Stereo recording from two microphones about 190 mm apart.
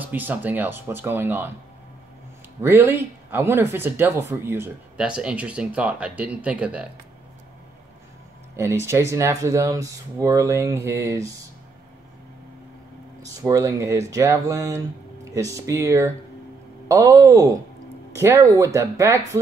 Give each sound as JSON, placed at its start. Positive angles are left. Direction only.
{"t": 0.0, "sound": "speech", "side_deg": -10}
{"t": 2.6, "sound": "speech", "side_deg": -10}
{"t": 8.5, "sound": "speech", "side_deg": -15}
{"t": 13.4, "sound": "speech", "side_deg": -15}